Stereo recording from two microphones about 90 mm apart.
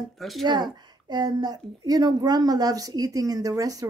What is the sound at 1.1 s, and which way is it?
A woman's voice, 50° right (ahead or behind).